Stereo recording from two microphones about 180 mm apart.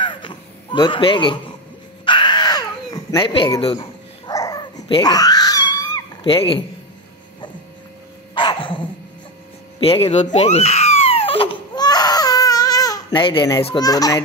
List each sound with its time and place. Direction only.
0.0 s a sound: 25° left (ahead or behind)
2.0 s cat: 25° left (ahead or behind)
4.3 s dog: 20° left (ahead or behind)
6.3 s a man's voice: 30° left (ahead or behind)
8.4 s dog: 30° left (ahead or behind)
9.8 s a sound: 30° left (ahead or behind)